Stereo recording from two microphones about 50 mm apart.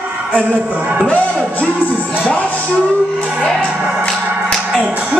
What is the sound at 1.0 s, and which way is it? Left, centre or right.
Music, left.